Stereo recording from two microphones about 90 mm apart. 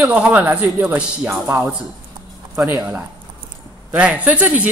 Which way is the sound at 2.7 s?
15° right (ahead or behind).